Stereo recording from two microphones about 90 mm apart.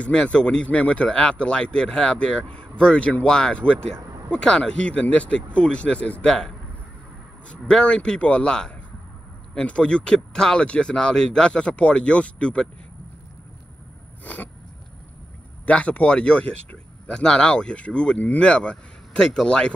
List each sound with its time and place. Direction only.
0.0 s speech: 10° left (ahead or behind)
14.2 s speech: 20° left (ahead or behind)
15.6 s speech: 15° left (ahead or behind)